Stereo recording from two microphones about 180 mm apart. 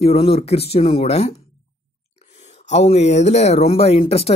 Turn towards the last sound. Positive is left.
turn(degrees=35)  # may be behind; listen again after turning